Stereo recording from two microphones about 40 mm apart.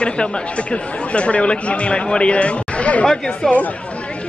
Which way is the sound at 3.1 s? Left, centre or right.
Centre.